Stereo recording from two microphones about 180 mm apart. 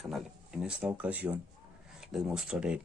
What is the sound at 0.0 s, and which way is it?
Speech, centre (ahead or behind).